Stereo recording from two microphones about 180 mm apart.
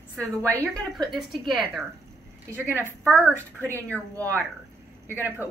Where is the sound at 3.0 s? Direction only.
10° left (ahead or behind).